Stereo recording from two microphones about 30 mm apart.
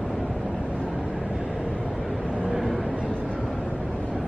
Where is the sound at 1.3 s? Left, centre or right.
Right.